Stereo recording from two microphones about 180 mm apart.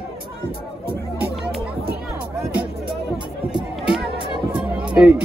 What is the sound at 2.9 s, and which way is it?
Music, 25° right (ahead or behind).